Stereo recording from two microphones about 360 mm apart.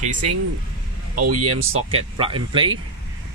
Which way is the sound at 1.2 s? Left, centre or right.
Right.